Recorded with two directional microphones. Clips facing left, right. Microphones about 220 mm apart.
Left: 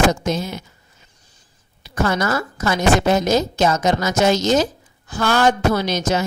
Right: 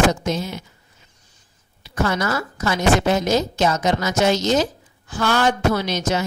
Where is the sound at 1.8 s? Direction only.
45° left (ahead or behind).